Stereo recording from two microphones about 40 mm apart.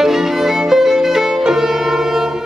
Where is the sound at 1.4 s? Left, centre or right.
Centre.